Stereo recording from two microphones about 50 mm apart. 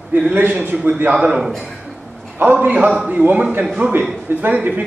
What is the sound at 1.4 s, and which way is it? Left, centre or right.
Speech, centre.